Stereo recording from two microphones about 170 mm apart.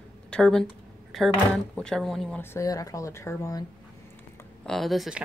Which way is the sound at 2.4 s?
15° left (ahead or behind).